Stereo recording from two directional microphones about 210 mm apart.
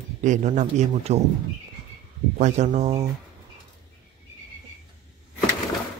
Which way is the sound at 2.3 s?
35° right (ahead or behind).